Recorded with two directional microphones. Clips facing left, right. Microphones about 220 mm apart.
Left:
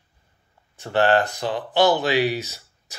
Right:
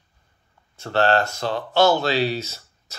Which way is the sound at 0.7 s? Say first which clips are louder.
Left 1 dB; 15° left (ahead or behind).